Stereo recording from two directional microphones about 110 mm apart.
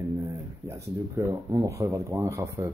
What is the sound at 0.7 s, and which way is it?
Speech, 25° right (ahead or behind).